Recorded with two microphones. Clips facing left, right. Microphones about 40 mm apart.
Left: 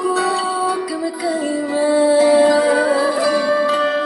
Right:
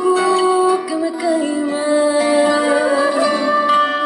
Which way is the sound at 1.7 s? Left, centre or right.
Right.